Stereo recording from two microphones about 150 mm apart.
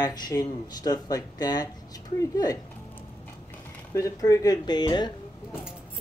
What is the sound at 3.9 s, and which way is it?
Speech, 20° left (ahead or behind).